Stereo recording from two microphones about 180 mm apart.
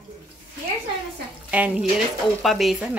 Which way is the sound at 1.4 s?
5° right (ahead or behind).